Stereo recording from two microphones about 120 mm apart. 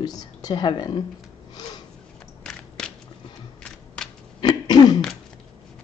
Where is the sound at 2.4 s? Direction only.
5° left (ahead or behind).